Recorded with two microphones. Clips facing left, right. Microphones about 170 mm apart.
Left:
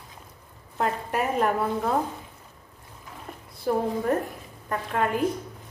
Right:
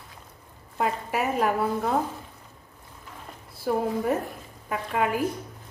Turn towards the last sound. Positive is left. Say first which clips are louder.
# even
turn(degrees=-5)  # may be behind; listen again after turning